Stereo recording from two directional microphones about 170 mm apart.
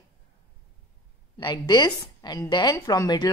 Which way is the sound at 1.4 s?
25° left (ahead or behind).